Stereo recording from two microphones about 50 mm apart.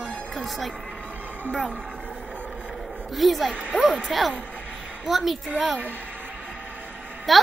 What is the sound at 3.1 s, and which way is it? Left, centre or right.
Speech, centre.